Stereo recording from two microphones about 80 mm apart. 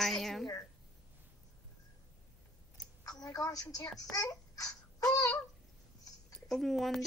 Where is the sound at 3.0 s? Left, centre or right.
Left.